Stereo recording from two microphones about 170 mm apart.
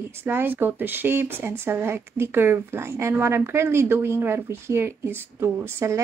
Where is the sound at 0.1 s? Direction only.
15° right (ahead or behind).